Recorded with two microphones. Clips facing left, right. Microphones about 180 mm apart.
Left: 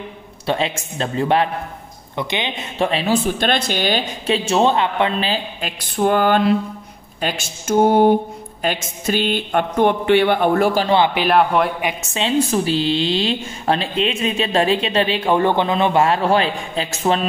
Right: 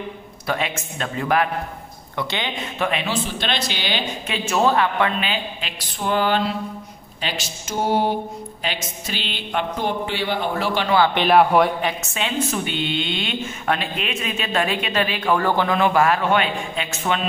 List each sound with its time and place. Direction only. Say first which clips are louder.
0.5 s speech: left 4 dB; 30° left (ahead or behind)
2.8 s speech: left 4 dB; 30° left (ahead or behind)
3.1 s speech: left 7 dB; 50° left (ahead or behind)
4.3 s speech: left 4 dB; 25° left (ahead or behind)
5.2 s speech: left 4 dB; 40° left (ahead or behind)
11.1 s a man's voice: right 1 dB; centre (ahead or behind)
12.1 s speech: left 6 dB; 30° left (ahead or behind)